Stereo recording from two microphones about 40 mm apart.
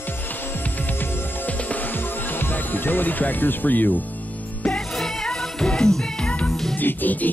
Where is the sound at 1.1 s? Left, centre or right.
Left.